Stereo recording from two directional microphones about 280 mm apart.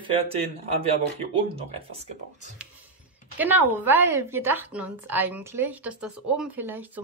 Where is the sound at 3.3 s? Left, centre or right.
Centre.